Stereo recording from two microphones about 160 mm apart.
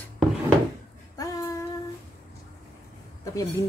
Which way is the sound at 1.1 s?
20° left (ahead or behind).